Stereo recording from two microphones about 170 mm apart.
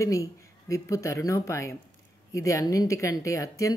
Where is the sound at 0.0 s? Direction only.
20° left (ahead or behind).